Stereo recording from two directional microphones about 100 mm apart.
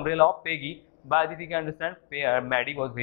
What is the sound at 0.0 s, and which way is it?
A man's voice, 20° left (ahead or behind).